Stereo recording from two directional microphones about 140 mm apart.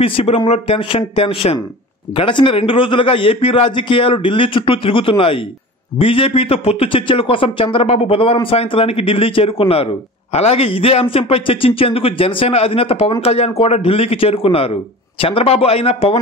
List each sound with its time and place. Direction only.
0.0 s a man's voice: 45° left (ahead or behind)